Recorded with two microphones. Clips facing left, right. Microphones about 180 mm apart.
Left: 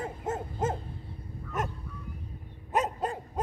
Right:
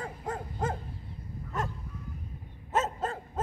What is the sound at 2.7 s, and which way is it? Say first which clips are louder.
Dog: left 1 dB; 15° left (ahead or behind).